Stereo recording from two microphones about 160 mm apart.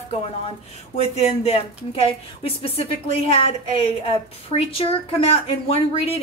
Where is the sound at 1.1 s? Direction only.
40° left (ahead or behind).